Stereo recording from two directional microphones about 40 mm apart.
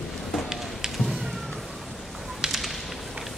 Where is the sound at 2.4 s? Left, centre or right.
Centre.